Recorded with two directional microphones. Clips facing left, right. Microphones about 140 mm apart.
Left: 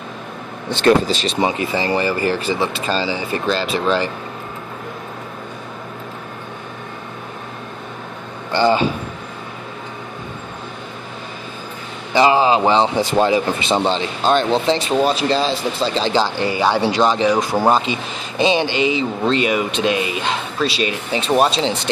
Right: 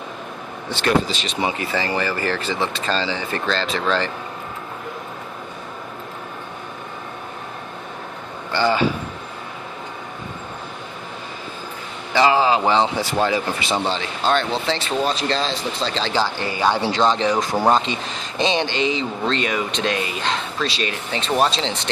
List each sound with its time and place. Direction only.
0.8 s speech: 40° left (ahead or behind)
1.6 s speech: 20° left (ahead or behind)
8.5 s a man's voice: 20° left (ahead or behind)
12.1 s speech: 20° left (ahead or behind)